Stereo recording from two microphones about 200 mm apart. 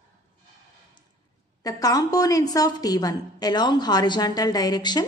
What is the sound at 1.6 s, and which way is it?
A woman's voice, 20° left (ahead or behind).